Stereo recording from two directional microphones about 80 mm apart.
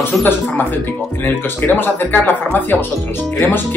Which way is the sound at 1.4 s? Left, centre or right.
Left.